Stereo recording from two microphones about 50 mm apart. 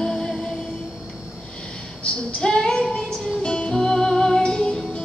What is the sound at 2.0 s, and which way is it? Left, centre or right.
Music, centre.